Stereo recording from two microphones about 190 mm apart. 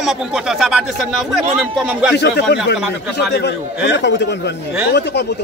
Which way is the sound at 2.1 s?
60° left (ahead or behind).